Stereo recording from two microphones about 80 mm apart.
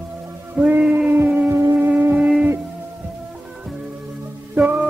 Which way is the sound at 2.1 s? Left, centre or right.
Centre.